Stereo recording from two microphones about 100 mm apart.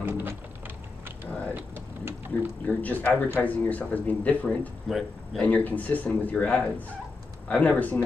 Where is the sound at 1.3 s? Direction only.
15° left (ahead or behind).